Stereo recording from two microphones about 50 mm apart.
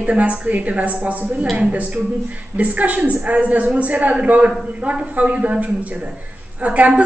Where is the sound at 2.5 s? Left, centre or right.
Right.